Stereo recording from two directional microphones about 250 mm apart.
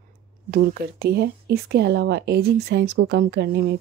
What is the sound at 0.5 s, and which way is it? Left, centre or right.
A woman's voice, right.